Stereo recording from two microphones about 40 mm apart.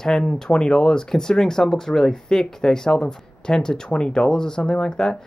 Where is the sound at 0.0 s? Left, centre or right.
Centre.